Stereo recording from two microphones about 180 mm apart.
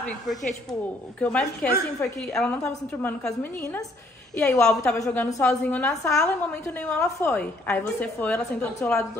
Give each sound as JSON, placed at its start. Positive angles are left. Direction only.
{"t": 0.0, "sound": "a woman's voice", "side_deg": 0}
{"t": 4.8, "sound": "a woman's voice", "side_deg": 15}